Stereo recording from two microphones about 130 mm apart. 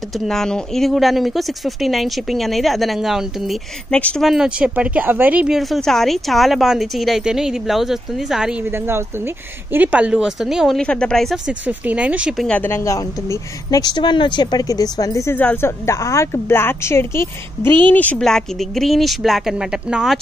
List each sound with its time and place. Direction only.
0.3 s a woman's voice: 5° left (ahead or behind)
8.6 s a woman's voice: 15° right (ahead or behind); by 11.5 s 5° left (ahead or behind)
11.6 s speech: 10° right (ahead or behind)
12.4 s a woman's voice: 15° left (ahead or behind); by 20.2 s 5° right (ahead or behind)